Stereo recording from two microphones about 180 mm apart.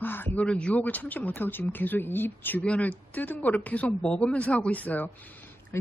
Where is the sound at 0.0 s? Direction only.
10° left (ahead or behind).